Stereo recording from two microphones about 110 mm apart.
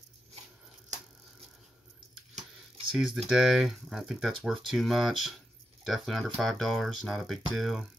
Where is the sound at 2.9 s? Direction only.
5° right (ahead or behind).